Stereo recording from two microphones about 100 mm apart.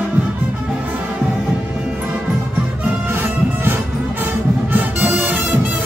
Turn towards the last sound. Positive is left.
turn(degrees=-20)  # may be behind; listen again after turning